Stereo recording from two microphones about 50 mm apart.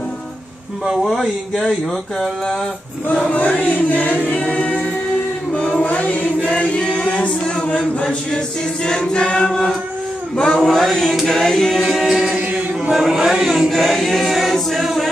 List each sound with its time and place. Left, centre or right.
1.0 s choir: centre
3.3 s a capella: left
3.6 s choir: left
7.1 s a capella: left
8.8 s choir: centre
10.6 s choir: centre
11.8 s choir: centre